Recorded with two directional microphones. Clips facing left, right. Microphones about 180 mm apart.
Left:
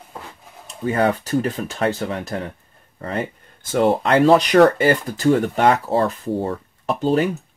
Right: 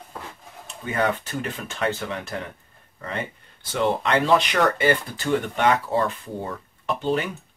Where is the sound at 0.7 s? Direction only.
35° left (ahead or behind).